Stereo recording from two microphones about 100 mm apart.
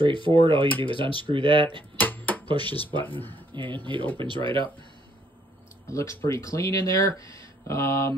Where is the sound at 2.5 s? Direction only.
50° right (ahead or behind).